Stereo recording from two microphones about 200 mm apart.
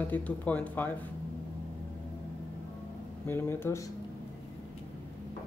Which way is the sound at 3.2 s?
10° left (ahead or behind).